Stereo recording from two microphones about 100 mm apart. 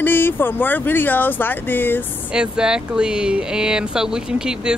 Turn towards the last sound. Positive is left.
turn(degrees=-5)  # may be behind; listen again after turning